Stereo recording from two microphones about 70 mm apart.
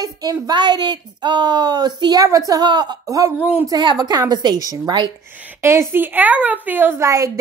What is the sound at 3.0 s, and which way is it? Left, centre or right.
Speech, right.